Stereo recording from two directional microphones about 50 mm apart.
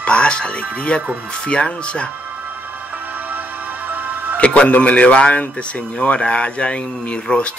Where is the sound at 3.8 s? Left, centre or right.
Right.